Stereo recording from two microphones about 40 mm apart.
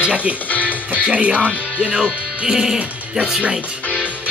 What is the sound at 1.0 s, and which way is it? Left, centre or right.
Speech, right.